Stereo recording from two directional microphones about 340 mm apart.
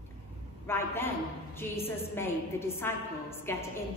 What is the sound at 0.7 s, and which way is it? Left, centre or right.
A woman's voice, centre.